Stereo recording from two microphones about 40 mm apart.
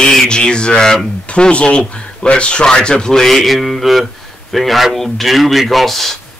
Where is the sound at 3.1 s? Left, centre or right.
Centre.